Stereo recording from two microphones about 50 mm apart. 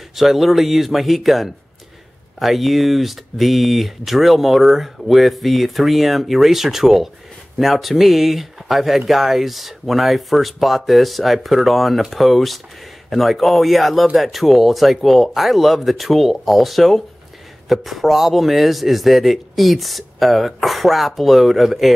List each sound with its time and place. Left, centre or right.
0.1 s speech: centre